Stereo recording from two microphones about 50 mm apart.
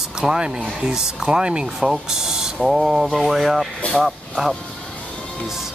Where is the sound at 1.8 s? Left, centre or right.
Centre.